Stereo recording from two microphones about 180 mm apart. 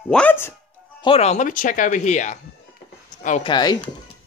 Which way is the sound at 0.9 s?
30° left (ahead or behind).